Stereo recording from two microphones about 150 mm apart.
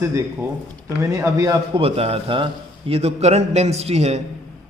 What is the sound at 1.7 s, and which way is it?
A man's voice, 40° right (ahead or behind).